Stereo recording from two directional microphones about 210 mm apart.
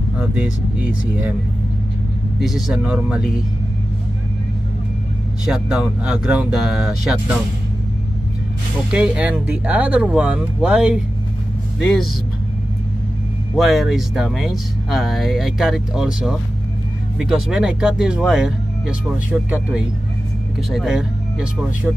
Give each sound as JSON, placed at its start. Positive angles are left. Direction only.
{"t": 0.2, "sound": "speech", "side_deg": -5}
{"t": 2.4, "sound": "speech", "side_deg": -5}
{"t": 5.4, "sound": "speech", "side_deg": -5}
{"t": 8.9, "sound": "speech", "side_deg": -5}
{"t": 13.6, "sound": "speech", "side_deg": 0}